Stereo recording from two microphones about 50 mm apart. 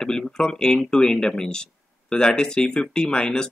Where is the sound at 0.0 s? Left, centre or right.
Centre.